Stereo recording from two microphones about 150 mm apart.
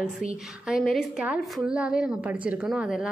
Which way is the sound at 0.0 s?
5° right (ahead or behind).